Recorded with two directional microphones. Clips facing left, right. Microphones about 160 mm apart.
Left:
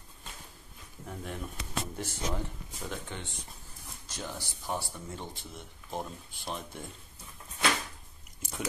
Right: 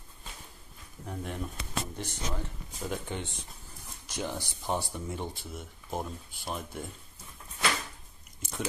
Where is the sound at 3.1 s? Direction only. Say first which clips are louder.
Right 4 dB; 15° right (ahead or behind).